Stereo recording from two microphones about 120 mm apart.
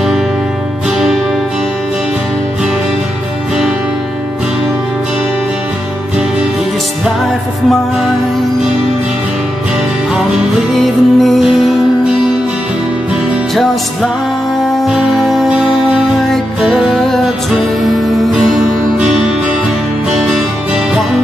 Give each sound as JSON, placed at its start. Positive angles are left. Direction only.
{"t": 10.7, "sound": "music", "side_deg": 0}
{"t": 14.8, "sound": "music", "side_deg": 0}